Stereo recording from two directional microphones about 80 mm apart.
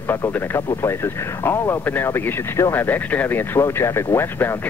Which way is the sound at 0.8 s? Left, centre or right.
Left.